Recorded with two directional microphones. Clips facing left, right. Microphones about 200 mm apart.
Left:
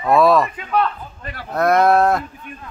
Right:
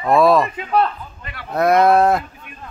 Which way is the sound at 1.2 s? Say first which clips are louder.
Left 3 dB; 40° left (ahead or behind).